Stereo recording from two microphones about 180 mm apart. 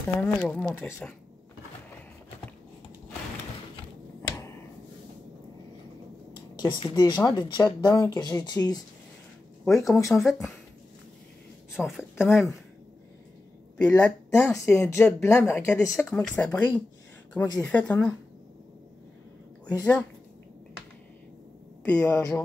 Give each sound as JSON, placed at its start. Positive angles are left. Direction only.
{"t": 0.2, "sound": "speech", "side_deg": 5}
{"t": 6.6, "sound": "speech", "side_deg": 25}
{"t": 10.0, "sound": "speech", "side_deg": 0}
{"t": 11.7, "sound": "a woman's voice", "side_deg": -5}
{"t": 13.7, "sound": "a woman's voice", "side_deg": 10}
{"t": 19.8, "sound": "speech", "side_deg": 5}
{"t": 21.8, "sound": "speech", "side_deg": 15}